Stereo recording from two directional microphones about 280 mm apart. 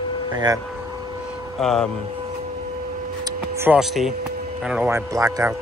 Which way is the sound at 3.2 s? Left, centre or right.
Centre.